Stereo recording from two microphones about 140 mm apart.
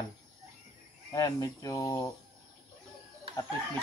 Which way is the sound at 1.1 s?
25° left (ahead or behind).